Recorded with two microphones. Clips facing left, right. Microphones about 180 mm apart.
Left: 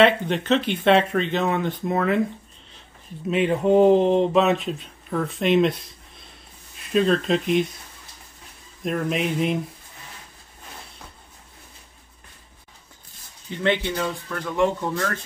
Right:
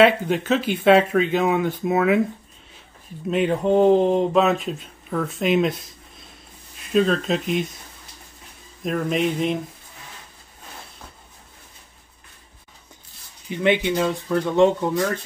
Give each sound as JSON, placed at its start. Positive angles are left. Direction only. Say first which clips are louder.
{"t": 0.0, "sound": "speech", "louder": "right 2 dB", "side_deg": -5}
{"t": 3.3, "sound": "speech", "louder": "even", "side_deg": 0}
{"t": 8.8, "sound": "speech", "louder": "right 2 dB", "side_deg": 0}
{"t": 13.5, "sound": "speech", "louder": "right 3 dB", "side_deg": -15}